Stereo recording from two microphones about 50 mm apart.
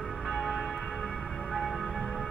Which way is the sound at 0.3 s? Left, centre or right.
Centre.